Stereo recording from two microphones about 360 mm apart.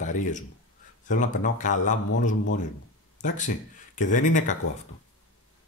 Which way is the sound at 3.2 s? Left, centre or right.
Left.